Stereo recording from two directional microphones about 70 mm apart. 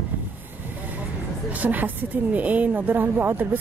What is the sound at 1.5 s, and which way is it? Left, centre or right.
A woman's voice, right.